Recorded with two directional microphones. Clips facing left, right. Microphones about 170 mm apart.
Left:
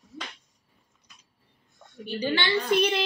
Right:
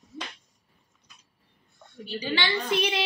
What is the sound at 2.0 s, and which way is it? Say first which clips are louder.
Speech: left 2 dB; 55° left (ahead or behind).